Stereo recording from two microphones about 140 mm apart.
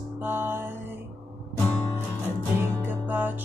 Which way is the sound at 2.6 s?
15° right (ahead or behind).